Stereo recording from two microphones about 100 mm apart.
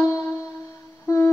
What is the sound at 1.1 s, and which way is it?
Humming, 25° left (ahead or behind).